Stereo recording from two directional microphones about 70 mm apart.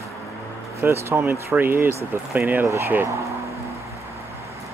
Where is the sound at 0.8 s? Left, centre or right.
Right.